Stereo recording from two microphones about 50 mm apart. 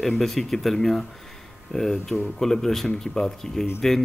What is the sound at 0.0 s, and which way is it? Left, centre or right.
Speech, centre.